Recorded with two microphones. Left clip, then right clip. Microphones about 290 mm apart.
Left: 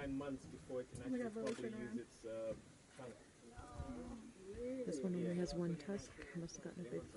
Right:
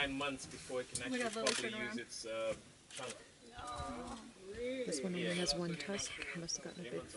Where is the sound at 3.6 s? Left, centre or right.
Centre.